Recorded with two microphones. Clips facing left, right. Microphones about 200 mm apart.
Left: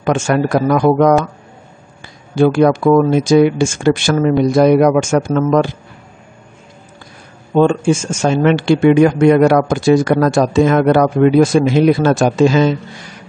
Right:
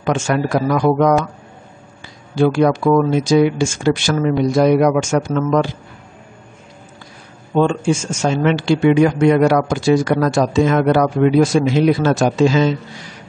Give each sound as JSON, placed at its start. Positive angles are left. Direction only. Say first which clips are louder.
{"t": 0.0, "sound": "speech", "louder": "left 3 dB", "side_deg": 50}
{"t": 2.3, "sound": "speech", "louder": "left 3 dB", "side_deg": 50}
{"t": 7.5, "sound": "speech", "louder": "left 4 dB", "side_deg": 50}